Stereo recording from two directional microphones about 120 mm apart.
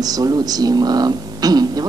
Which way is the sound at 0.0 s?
30° right (ahead or behind).